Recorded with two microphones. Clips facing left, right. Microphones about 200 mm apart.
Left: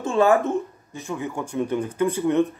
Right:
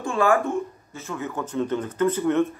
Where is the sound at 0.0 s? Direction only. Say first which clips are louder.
Left 3 dB; 20° left (ahead or behind).